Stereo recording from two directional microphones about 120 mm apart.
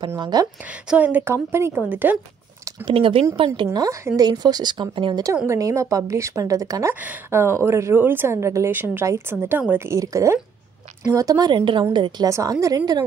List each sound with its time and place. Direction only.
0.2 s speech: 35° right (ahead or behind)
0.8 s a woman's voice: 10° right (ahead or behind)
2.8 s speech: 45° right (ahead or behind)
3.7 s speech: 30° right (ahead or behind)
5.5 s a woman's voice: 25° right (ahead or behind); by 12.3 s 40° right (ahead or behind)
12.3 s a woman's voice: 25° right (ahead or behind)